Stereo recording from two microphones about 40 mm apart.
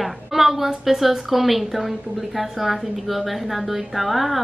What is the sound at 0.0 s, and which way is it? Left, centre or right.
A woman's voice, centre.